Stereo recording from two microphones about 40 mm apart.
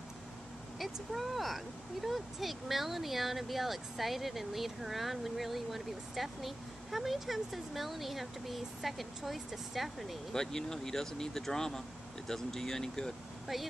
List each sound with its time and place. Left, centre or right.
0.7 s speech: centre
10.3 s speech: centre
13.5 s speech: centre